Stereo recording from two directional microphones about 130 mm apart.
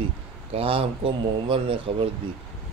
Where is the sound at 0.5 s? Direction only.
45° right (ahead or behind).